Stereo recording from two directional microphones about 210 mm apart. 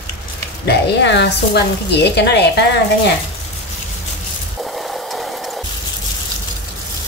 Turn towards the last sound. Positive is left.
turn(degrees=0)  # may be behind; listen again after turning